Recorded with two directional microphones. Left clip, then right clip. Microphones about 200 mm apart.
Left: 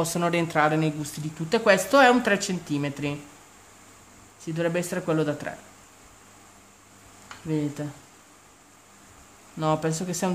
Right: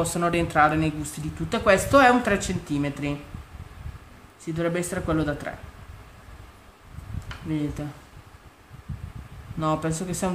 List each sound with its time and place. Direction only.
0.0 s speech: 30° left (ahead or behind)
4.6 s speech: 30° left (ahead or behind)
7.5 s speech: 35° left (ahead or behind)
9.6 s speech: 30° left (ahead or behind)